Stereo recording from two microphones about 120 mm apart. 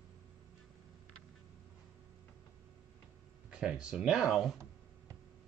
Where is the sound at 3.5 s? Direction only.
10° right (ahead or behind).